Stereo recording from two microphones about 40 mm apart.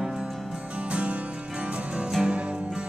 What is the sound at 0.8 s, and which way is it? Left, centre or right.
Music, right.